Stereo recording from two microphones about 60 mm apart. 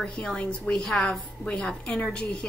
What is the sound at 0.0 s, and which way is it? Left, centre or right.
A woman's voice, centre.